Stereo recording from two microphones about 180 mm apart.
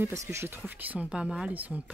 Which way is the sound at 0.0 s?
15° right (ahead or behind).